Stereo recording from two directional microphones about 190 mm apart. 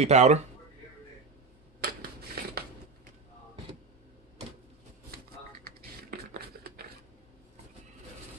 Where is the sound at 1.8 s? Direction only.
55° right (ahead or behind).